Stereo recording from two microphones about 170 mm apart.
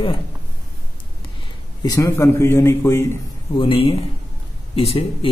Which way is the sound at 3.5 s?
30° left (ahead or behind).